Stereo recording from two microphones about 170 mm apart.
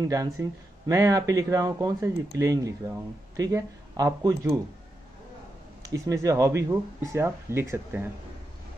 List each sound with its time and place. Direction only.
0.0 s speech: 20° right (ahead or behind)
5.8 s speech: 20° right (ahead or behind)